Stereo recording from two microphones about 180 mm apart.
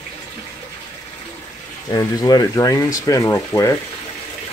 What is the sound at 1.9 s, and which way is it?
Speech, 20° left (ahead or behind).